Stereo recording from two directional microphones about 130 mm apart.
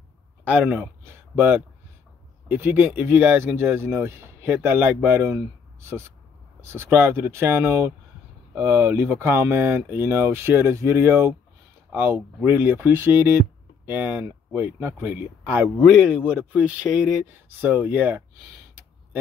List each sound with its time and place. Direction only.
0.5 s speech: 10° right (ahead or behind)
15.8 s speech: centre (ahead or behind)
16.6 s speech: 10° right (ahead or behind)